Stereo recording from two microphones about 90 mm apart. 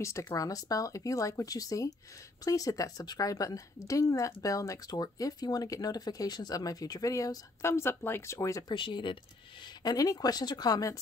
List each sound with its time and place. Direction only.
0.0 s speech: 35° left (ahead or behind)
8.6 s speech: 60° left (ahead or behind)
9.8 s speech: 45° left (ahead or behind)